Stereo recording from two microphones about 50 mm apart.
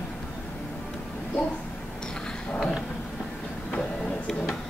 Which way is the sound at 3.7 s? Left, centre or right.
Left.